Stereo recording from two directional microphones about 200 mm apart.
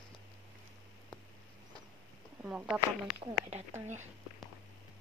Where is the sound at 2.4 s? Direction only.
5° right (ahead or behind).